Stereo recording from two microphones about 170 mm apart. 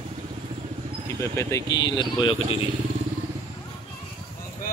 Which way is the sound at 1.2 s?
15° left (ahead or behind).